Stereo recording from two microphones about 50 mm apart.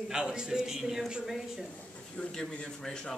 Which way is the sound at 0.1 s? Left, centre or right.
Centre.